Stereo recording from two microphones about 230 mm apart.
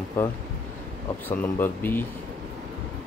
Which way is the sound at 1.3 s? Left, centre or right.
Centre.